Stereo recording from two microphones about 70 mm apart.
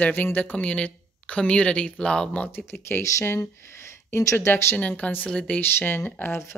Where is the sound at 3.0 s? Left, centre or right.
Left.